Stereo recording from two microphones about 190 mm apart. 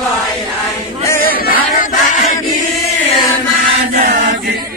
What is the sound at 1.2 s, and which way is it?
Choir, 50° left (ahead or behind).